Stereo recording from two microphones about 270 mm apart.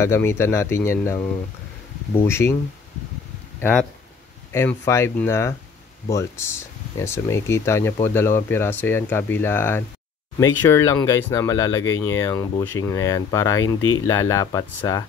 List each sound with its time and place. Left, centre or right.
0.0 s speech: centre
3.5 s speech: centre
13.7 s speech: left
14.0 s speech: centre